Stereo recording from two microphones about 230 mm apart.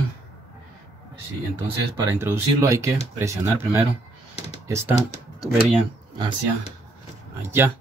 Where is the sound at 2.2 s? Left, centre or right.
Centre.